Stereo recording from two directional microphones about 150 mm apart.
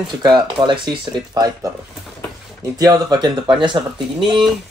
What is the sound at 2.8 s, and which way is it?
Speech, 25° right (ahead or behind).